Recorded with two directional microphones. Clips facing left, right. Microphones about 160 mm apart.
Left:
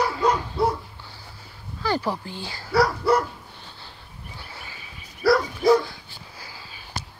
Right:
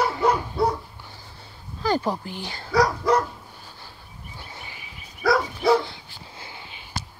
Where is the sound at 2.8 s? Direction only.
10° left (ahead or behind).